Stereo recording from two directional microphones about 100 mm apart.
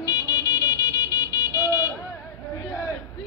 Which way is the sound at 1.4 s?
30° left (ahead or behind).